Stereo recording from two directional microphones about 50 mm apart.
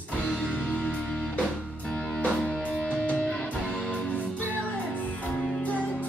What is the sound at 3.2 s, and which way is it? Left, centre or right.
Music, left.